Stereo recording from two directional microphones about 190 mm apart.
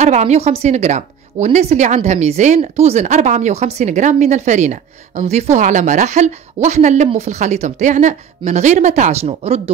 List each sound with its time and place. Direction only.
0.0 s a woman's voice: 35° right (ahead or behind)